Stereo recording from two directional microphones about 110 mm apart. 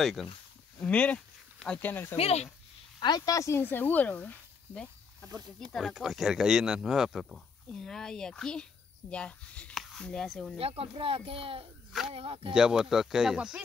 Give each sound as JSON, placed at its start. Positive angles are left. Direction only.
{"t": 0.0, "sound": "speech", "side_deg": 0}
{"t": 0.7, "sound": "speech", "side_deg": 10}
{"t": 2.1, "sound": "speech", "side_deg": 65}
{"t": 3.0, "sound": "speech", "side_deg": 40}
{"t": 5.7, "sound": "speech", "side_deg": 0}
{"t": 10.6, "sound": "speech", "side_deg": -60}
{"t": 12.5, "sound": "speech", "side_deg": -5}